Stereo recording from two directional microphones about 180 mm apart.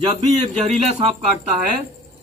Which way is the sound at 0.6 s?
35° right (ahead or behind).